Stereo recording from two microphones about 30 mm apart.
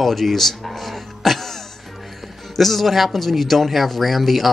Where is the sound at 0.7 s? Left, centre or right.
Centre.